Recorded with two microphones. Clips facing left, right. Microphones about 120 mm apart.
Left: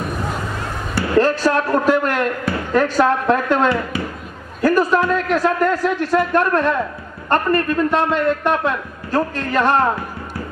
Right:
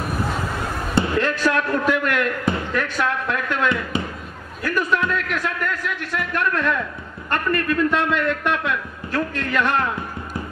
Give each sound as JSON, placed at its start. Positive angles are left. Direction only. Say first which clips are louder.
{"t": 1.1, "sound": "a man's voice", "louder": "left 10 dB", "side_deg": 35}